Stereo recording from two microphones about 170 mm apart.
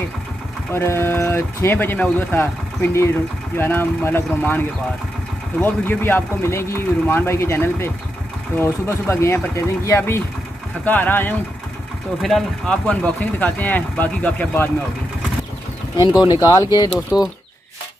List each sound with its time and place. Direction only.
0.7 s speech: 15° left (ahead or behind)
5.6 s speech: 10° left (ahead or behind)
16.2 s speech: 25° left (ahead or behind)